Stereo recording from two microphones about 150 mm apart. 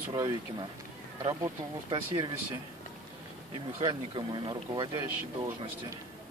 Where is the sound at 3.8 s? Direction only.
30° right (ahead or behind).